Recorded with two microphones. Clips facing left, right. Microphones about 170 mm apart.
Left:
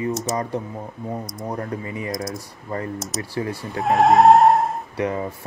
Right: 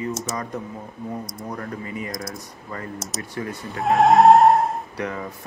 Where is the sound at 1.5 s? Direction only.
30° left (ahead or behind).